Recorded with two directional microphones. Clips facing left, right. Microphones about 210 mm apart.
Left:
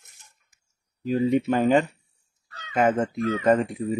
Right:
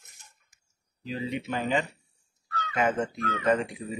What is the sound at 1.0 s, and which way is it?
Speech, 50° left (ahead or behind).